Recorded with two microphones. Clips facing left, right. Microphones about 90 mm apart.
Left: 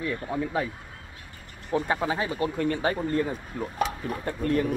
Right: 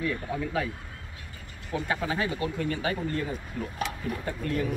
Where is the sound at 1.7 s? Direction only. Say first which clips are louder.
Left 4 dB; 30° left (ahead or behind).